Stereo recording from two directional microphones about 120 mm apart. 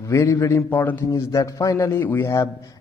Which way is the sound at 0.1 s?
25° left (ahead or behind).